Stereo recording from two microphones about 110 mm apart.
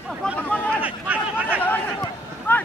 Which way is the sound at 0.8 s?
15° right (ahead or behind).